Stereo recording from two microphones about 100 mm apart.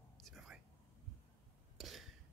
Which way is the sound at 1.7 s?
Centre (ahead or behind).